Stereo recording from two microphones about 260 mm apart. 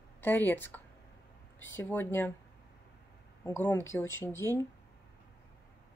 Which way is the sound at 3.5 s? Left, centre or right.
Centre.